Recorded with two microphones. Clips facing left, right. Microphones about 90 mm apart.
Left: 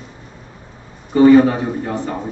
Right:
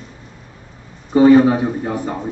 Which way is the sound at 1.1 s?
15° right (ahead or behind).